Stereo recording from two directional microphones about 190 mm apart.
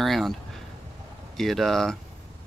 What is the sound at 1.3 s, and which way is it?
Speech, centre (ahead or behind).